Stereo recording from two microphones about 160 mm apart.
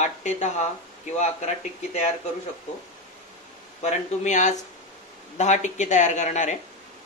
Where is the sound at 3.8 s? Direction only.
45° left (ahead or behind).